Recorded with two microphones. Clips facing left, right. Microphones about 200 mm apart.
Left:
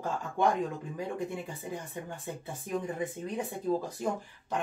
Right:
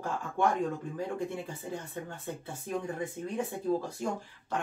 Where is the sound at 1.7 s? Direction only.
15° left (ahead or behind).